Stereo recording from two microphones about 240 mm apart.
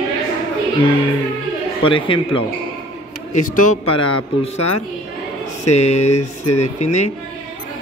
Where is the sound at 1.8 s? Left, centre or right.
Left.